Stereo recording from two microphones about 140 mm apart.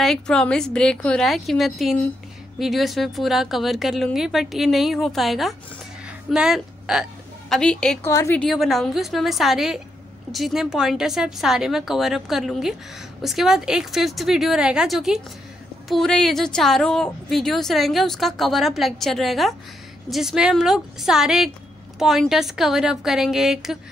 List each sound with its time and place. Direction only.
0.0 s a woman's voice: 5° left (ahead or behind)
8.0 s speech: 20° left (ahead or behind)
8.4 s a woman's voice: centre (ahead or behind)